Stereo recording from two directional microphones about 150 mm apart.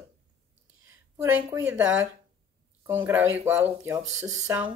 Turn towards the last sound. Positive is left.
turn(degrees=-15)  # may be behind; listen again after turning